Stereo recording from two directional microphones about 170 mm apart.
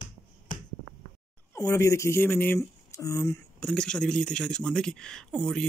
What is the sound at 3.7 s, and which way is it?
A woman's voice, 5° left (ahead or behind).